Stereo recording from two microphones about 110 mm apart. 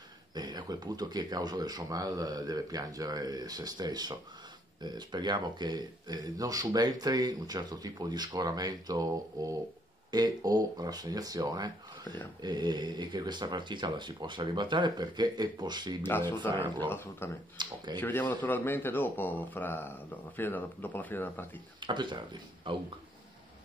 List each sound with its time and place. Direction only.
0.3 s speech: 40° right (ahead or behind)
16.0 s speech: 20° left (ahead or behind)
16.6 s speech: 45° right (ahead or behind)
16.9 s speech: 20° left (ahead or behind)
17.6 s speech: 40° right (ahead or behind)
18.0 s speech: 15° left (ahead or behind)
21.7 s speech: 45° right (ahead or behind)